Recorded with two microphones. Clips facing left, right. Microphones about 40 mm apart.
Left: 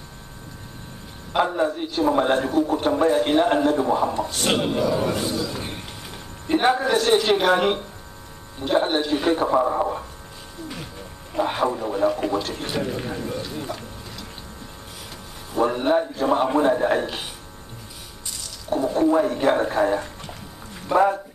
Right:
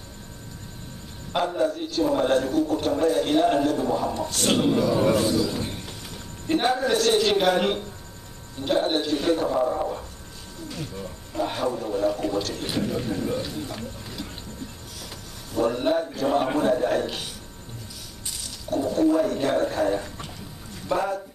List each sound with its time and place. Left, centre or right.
1.4 s a man's voice: left
4.9 s a man's voice: centre
5.6 s a sound: left
6.6 s a man's voice: centre
11.3 s a man's voice: left
13.3 s a man's voice: centre
15.5 s a man's voice: centre
18.7 s a man's voice: left
20.2 s a sound: centre